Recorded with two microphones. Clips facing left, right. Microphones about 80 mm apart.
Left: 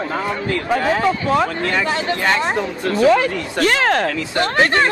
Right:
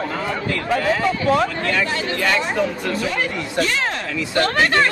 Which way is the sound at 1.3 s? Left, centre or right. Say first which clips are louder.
Left 1 dB; left.